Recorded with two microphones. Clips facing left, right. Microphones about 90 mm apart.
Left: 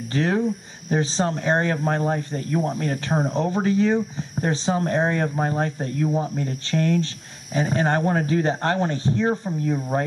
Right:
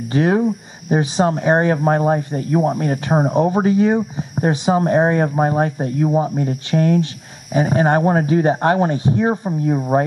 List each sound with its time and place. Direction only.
0.1 s speech: 15° right (ahead or behind)